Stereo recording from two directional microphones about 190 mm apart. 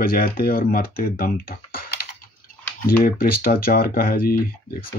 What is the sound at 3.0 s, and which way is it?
Speech, 50° left (ahead or behind).